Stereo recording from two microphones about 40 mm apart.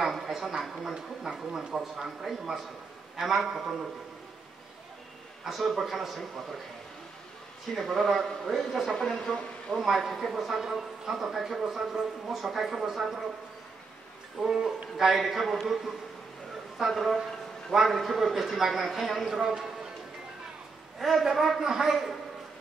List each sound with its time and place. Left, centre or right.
0.0 s a sound: centre
0.9 s speech: centre
5.4 s a man's voice: centre
7.7 s a man's voice: centre
8.9 s speech: centre
9.8 s a man's voice: centre
14.4 s speech: centre
15.0 s a man's voice: centre
19.2 s speech: centre
21.0 s a man's voice: centre